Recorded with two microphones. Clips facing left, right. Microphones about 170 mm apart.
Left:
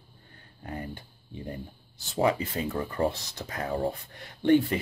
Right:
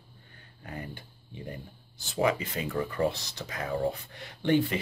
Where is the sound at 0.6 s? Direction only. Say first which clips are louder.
Left 3 dB; 35° left (ahead or behind).